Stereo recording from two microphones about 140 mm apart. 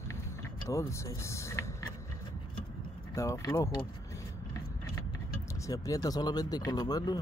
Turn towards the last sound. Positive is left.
turn(degrees=30)  # may be behind; listen again after turning